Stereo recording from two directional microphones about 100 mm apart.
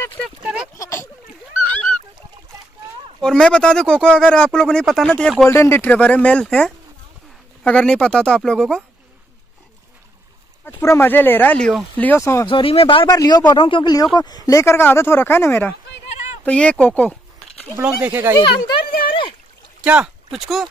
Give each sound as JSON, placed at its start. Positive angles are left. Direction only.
{"t": 0.4, "sound": "a sound", "side_deg": -10}
{"t": 0.7, "sound": "a sound", "side_deg": 30}
{"t": 1.6, "sound": "goose", "side_deg": 10}
{"t": 3.2, "sound": "speech", "side_deg": 5}
{"t": 5.5, "sound": "speech", "side_deg": 25}
{"t": 5.9, "sound": "speech", "side_deg": 15}
{"t": 10.6, "sound": "speech", "side_deg": 25}
{"t": 12.4, "sound": "speech", "side_deg": 65}
{"t": 13.0, "sound": "a man's voice", "side_deg": 35}
{"t": 14.1, "sound": "speech", "side_deg": 40}
{"t": 17.7, "sound": "speech", "side_deg": -15}
{"t": 18.5, "sound": "a sound", "side_deg": 60}
{"t": 19.8, "sound": "speech", "side_deg": -15}
{"t": 20.2, "sound": "speech", "side_deg": 0}